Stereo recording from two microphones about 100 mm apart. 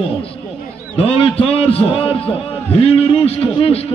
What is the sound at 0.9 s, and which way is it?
A man's voice, 70° left (ahead or behind).